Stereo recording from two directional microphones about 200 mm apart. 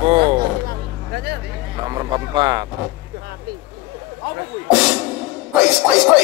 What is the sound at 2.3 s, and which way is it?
Speech, 20° right (ahead or behind).